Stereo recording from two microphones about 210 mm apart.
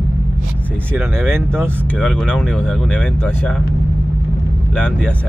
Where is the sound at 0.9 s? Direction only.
10° right (ahead or behind).